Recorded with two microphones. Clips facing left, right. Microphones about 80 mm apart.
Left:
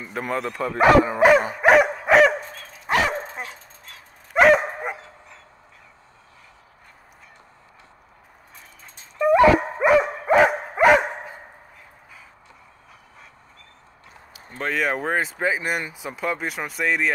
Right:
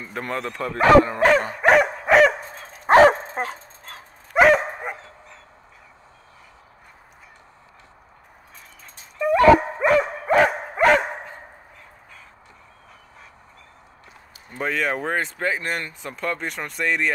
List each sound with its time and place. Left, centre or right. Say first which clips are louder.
0.0 s speech: left 2 dB; centre
0.7 s dog: right 1 dB; centre
2.7 s dog: right 9 dB; right
4.3 s dog: even; centre
9.2 s dog: right 1 dB; centre
14.5 s a sound: right 1 dB; centre
14.8 s speech: left 2 dB; centre